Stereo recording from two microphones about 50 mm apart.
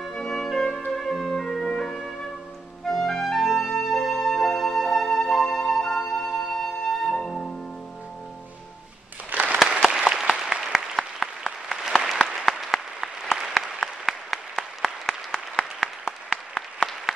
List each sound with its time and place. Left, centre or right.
0.1 s music: centre
2.8 s clarinet: centre
6.1 s music: centre
9.3 s applause: right
9.8 s applause: centre